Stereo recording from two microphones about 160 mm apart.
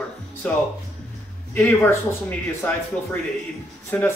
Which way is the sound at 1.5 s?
15° left (ahead or behind).